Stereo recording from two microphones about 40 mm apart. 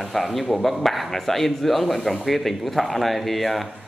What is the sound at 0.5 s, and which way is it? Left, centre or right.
Speech, centre.